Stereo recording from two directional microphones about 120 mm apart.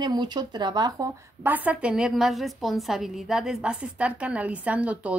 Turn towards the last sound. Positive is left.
turn(degrees=-10)  # may be behind; listen again after turning